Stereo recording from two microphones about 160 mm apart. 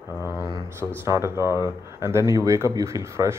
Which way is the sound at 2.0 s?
15° right (ahead or behind).